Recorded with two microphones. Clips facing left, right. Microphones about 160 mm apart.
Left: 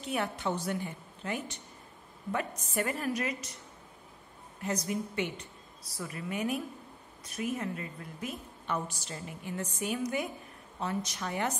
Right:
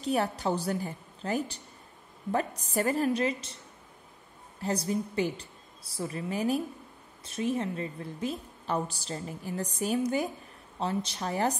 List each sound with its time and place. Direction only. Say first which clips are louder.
0.0 s a woman's voice: right 4 dB; 35° right (ahead or behind)
4.6 s a woman's voice: right 3 dB; 30° right (ahead or behind)